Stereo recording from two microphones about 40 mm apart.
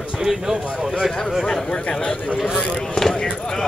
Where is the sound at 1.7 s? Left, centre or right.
Left.